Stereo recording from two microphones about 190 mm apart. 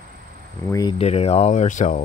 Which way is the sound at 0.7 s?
20° left (ahead or behind).